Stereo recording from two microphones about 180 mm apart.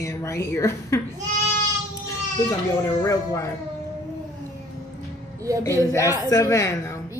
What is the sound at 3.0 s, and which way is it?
Speech, 15° left (ahead or behind).